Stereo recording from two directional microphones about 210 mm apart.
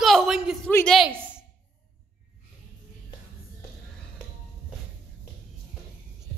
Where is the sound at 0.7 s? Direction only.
5° left (ahead or behind).